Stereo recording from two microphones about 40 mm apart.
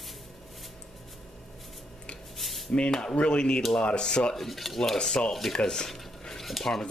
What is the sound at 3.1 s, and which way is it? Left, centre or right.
Speech, left.